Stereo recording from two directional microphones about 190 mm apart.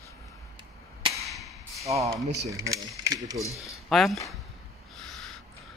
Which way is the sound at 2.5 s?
15° right (ahead or behind).